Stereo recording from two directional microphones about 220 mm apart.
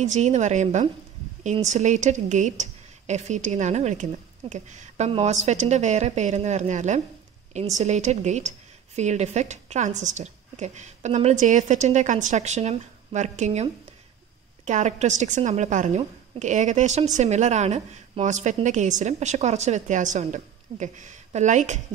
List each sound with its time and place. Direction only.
0.0 s a woman's voice: 30° right (ahead or behind)